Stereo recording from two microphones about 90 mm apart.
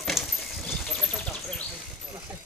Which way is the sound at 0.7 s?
Centre (ahead or behind).